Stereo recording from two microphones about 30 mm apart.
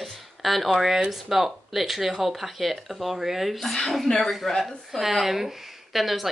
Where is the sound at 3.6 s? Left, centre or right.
Centre.